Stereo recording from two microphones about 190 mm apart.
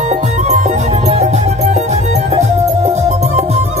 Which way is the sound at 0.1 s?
35° right (ahead or behind).